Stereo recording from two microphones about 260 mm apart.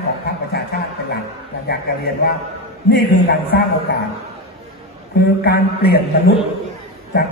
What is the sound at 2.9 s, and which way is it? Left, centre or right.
A man's voice, left.